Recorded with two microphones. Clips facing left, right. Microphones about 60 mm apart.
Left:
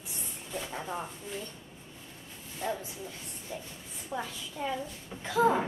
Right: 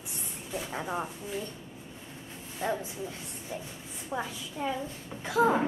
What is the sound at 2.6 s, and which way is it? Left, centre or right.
A woman's voice, right.